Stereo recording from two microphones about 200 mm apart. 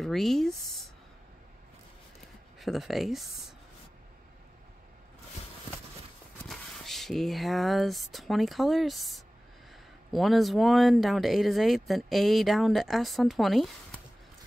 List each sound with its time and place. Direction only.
0.0 s speech: centre (ahead or behind)
2.6 s speech: centre (ahead or behind)
6.3 s speech: centre (ahead or behind)